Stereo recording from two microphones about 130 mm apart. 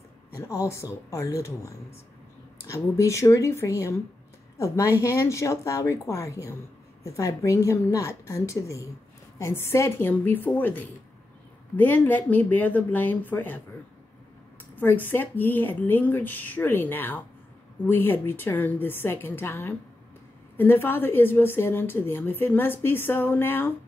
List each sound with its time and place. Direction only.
0.4 s speech: 25° left (ahead or behind)
2.7 s a woman's voice: 25° left (ahead or behind)
14.8 s a woman's voice: 15° left (ahead or behind)